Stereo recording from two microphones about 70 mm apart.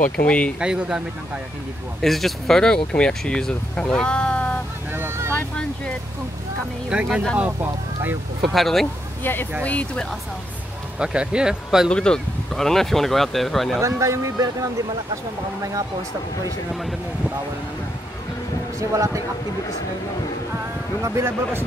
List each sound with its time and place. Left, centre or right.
0.6 s speech: centre
2.0 s speech: centre
4.9 s vehicle: right
6.9 s speech: centre
7.3 s speech: right
8.4 s speech: centre
9.2 s speech: left
9.6 s speech: centre
11.0 s speech: centre
11.9 s speech: centre
13.7 s a man's voice: right
18.8 s a man's voice: right
21.0 s speech: right